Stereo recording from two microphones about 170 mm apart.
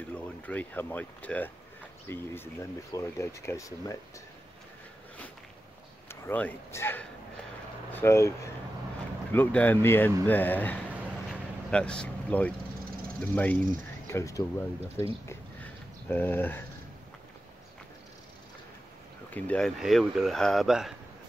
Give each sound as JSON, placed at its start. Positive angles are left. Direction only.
{"t": 0.1, "sound": "speech", "side_deg": 10}
{"t": 6.0, "sound": "speech", "side_deg": 10}
{"t": 9.3, "sound": "speech", "side_deg": 10}
{"t": 15.2, "sound": "a sound", "side_deg": 10}
{"t": 19.3, "sound": "speech", "side_deg": 10}